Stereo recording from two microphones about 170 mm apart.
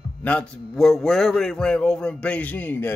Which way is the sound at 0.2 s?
5° left (ahead or behind).